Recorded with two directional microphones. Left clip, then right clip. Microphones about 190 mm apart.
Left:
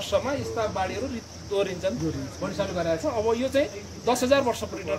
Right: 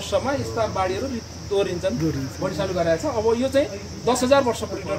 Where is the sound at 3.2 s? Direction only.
Centre (ahead or behind).